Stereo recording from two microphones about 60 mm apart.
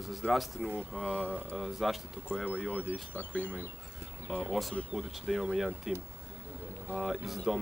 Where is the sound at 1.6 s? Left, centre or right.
Centre.